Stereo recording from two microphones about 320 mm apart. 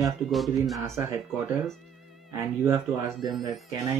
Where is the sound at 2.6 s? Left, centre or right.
Centre.